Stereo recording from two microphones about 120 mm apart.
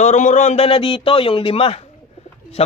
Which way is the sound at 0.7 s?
45° left (ahead or behind).